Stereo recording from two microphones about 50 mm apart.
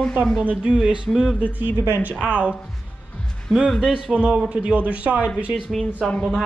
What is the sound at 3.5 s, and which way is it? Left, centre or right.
Speech, centre.